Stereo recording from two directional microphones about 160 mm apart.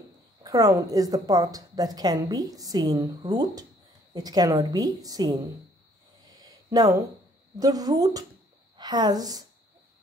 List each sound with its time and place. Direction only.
0.4 s a woman's voice: 20° right (ahead or behind)
6.2 s a sound: 25° right (ahead or behind)
7.5 s a woman's voice: 25° right (ahead or behind)